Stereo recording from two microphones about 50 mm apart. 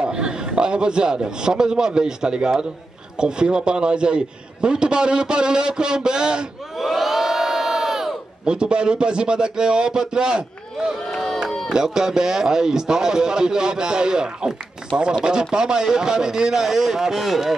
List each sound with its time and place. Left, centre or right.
0.0 s a man's voice: centre
6.8 s crowd: centre
8.5 s a man's voice: centre
11.1 s crowd: centre
11.4 s run: centre
11.7 s a man's voice: centre